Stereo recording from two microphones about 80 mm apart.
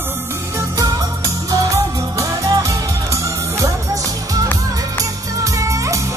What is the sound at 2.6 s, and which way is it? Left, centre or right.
Music, right.